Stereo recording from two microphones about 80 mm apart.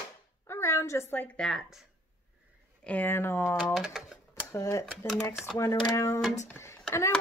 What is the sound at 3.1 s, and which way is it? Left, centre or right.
Speech, left.